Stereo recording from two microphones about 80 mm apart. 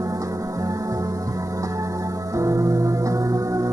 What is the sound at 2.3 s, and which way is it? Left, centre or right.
Music, right.